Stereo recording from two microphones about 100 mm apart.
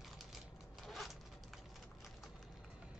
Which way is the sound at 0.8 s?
Centre (ahead or behind).